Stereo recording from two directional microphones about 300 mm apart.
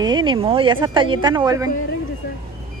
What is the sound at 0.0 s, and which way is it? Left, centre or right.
Speech, centre.